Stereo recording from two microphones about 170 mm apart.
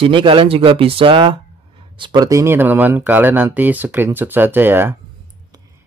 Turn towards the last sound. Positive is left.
turn(degrees=-15)  # may be behind; listen again after turning